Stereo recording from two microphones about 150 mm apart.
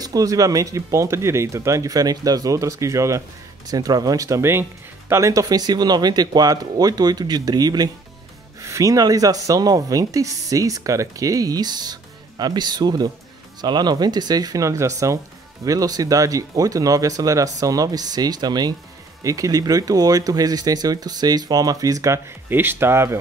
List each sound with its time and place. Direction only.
0.0 s speech: 25° right (ahead or behind)